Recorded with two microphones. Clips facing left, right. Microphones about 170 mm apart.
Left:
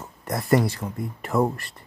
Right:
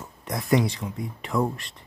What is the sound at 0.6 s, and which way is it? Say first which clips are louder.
Speech: left 1 dB; 5° left (ahead or behind).